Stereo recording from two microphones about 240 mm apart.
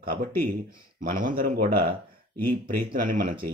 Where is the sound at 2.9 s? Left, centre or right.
Right.